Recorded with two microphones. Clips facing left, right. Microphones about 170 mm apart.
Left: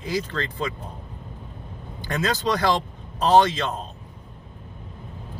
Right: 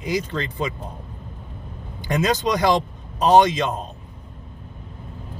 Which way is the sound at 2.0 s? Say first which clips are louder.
Right 4 dB; 15° right (ahead or behind).